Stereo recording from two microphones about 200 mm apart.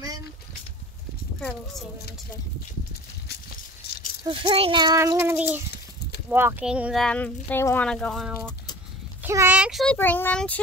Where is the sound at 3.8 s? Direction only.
55° left (ahead or behind).